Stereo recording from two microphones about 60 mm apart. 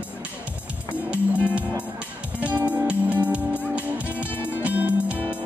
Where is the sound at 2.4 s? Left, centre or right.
Right.